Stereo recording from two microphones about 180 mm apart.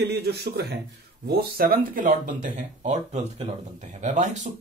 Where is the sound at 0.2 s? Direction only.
65° right (ahead or behind).